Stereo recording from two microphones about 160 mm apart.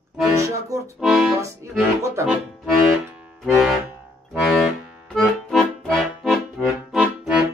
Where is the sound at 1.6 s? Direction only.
20° right (ahead or behind).